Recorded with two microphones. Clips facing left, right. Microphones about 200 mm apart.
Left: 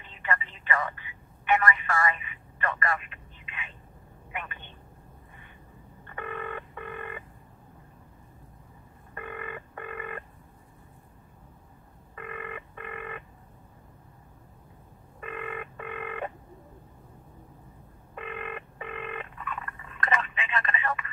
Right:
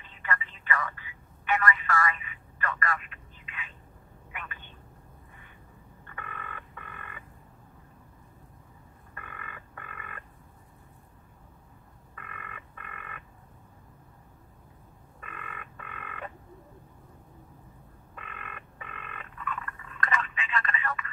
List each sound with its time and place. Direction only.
0.1 s telephone: 25° left (ahead or behind)
4.3 s vehicle: 25° left (ahead or behind)
6.0 s telephone: 25° left (ahead or behind)
9.1 s telephone bell ringing: 25° left (ahead or behind)
12.2 s telephone: 25° left (ahead or behind)
15.1 s telephone bell ringing: 25° left (ahead or behind)
18.1 s telephone: 25° left (ahead or behind)